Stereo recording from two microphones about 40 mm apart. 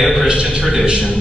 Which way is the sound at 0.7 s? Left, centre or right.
Right.